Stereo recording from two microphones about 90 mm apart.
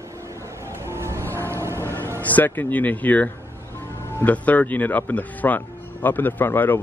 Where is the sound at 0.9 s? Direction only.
30° right (ahead or behind).